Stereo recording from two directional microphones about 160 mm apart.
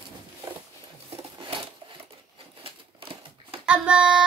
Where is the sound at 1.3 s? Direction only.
30° right (ahead or behind).